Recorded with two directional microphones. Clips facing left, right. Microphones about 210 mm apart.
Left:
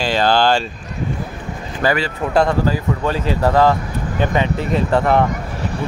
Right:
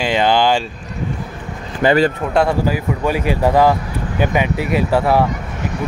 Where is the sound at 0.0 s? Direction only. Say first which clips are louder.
Right 1 dB; 15° right (ahead or behind).